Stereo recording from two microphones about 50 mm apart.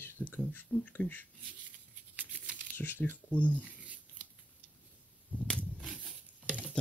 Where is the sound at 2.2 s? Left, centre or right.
Right.